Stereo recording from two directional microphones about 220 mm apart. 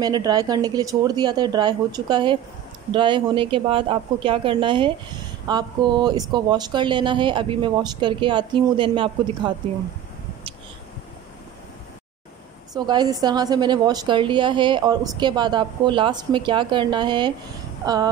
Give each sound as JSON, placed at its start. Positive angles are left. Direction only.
{"t": 0.0, "sound": "a woman's voice", "side_deg": -15}
{"t": 12.7, "sound": "a woman's voice", "side_deg": -20}